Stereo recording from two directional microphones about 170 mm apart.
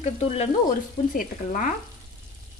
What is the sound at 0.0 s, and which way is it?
Frying, 35° left (ahead or behind).